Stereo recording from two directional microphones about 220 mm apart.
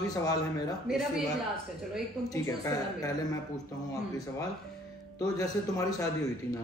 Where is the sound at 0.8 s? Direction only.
Centre (ahead or behind).